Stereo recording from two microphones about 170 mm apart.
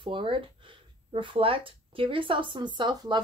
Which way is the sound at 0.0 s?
30° right (ahead or behind).